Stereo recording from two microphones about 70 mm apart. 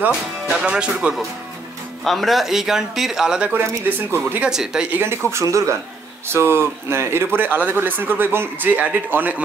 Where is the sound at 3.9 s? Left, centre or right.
Right.